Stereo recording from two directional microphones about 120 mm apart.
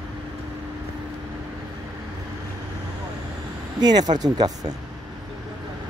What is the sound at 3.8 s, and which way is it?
Speech, 35° right (ahead or behind).